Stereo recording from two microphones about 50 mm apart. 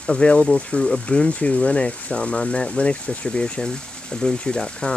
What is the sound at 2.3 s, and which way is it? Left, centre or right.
Speech, centre.